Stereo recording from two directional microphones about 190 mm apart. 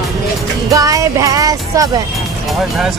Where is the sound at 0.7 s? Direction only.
15° right (ahead or behind).